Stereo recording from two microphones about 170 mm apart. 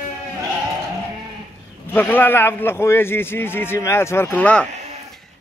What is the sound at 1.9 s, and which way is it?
A man's voice, 10° left (ahead or behind).